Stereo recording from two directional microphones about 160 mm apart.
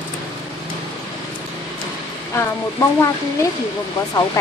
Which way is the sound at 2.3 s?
15° left (ahead or behind).